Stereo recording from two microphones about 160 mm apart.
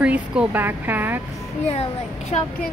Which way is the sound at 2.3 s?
40° left (ahead or behind).